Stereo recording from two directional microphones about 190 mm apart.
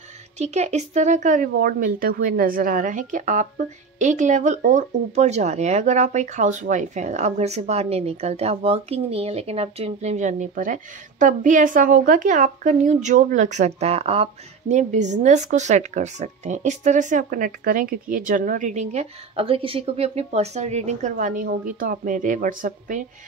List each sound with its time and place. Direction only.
0.4 s speech: 35° right (ahead or behind)